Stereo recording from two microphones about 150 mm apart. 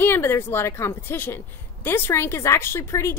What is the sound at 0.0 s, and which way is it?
A woman's voice, 15° left (ahead or behind).